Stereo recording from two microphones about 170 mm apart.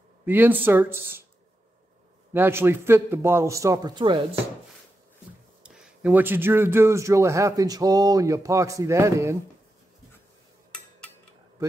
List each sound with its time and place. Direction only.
0.2 s a man's voice: 10° right (ahead or behind)
2.3 s a man's voice: 15° right (ahead or behind)
5.6 s a man's voice: 5° right (ahead or behind)